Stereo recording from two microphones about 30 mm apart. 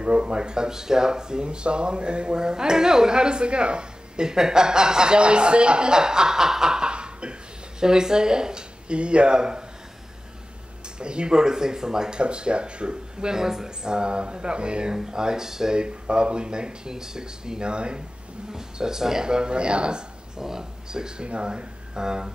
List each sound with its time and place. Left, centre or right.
0.0 s speech: right
7.8 s speech: right
11.0 s speech: right
12.2 s speech: right
13.4 s speech: centre
15.7 s speech: right
18.5 s speech: centre
19.2 s speech: right
20.3 s speech: centre
21.3 s speech: right